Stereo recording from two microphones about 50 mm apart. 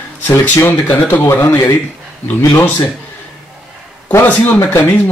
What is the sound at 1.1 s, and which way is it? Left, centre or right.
Speech, left.